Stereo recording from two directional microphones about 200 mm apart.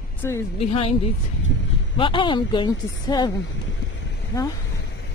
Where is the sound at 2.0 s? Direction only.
25° left (ahead or behind).